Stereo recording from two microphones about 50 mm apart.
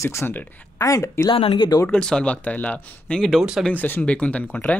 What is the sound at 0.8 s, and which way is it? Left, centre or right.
Speech, left.